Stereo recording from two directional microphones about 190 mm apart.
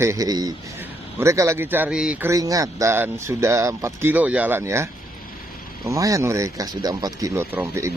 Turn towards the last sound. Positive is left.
turn(degrees=-15)  # may be behind; listen again after turning